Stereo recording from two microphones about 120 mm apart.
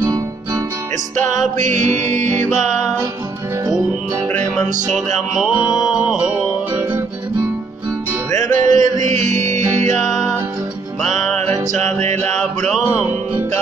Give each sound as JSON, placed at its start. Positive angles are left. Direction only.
{"t": 1.4, "sound": "music", "side_deg": -90}
{"t": 4.8, "sound": "music", "side_deg": 0}
{"t": 8.3, "sound": "music", "side_deg": 25}
{"t": 8.6, "sound": "music", "side_deg": -90}
{"t": 11.7, "sound": "music", "side_deg": -75}
{"t": 12.2, "sound": "music", "side_deg": 5}